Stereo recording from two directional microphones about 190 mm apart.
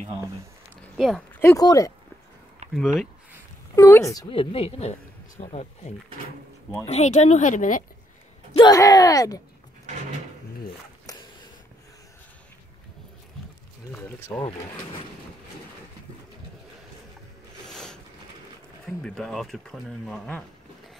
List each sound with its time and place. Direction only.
0.9 s speech: centre (ahead or behind)
1.4 s speech: 15° left (ahead or behind)
2.6 s a sound: 35° right (ahead or behind)
3.7 s speech: 15° left (ahead or behind)
4.3 s speech: 30° left (ahead or behind)
8.5 s speech: 20° left (ahead or behind)
11.1 s a sound: 20° left (ahead or behind)
13.9 s speech: 10° left (ahead or behind)
17.6 s a sound: 5° left (ahead or behind)
18.9 s speech: 5° left (ahead or behind)